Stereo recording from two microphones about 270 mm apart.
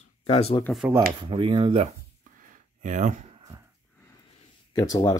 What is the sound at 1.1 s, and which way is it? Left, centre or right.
Speech, centre.